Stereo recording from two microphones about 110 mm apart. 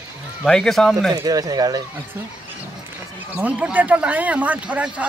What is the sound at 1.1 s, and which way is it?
Speech, 35° right (ahead or behind).